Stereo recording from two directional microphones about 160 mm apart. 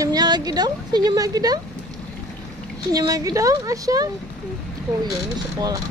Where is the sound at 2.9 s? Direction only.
20° right (ahead or behind).